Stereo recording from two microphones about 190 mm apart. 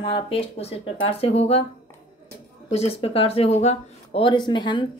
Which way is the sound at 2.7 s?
30° left (ahead or behind).